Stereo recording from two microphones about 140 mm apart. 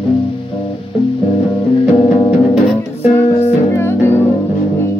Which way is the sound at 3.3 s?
45° left (ahead or behind).